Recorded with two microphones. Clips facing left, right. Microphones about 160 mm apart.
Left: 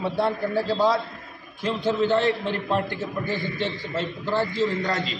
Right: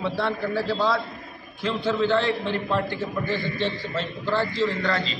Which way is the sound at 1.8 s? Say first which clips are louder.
Left 1 dB; 15° left (ahead or behind).